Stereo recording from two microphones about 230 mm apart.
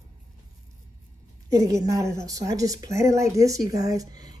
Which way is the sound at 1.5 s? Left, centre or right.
Centre.